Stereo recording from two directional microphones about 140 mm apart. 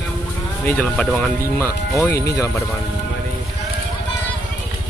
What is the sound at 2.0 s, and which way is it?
Speech, 20° left (ahead or behind).